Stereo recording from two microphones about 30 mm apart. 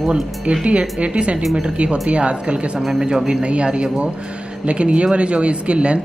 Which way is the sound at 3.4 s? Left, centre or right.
Right.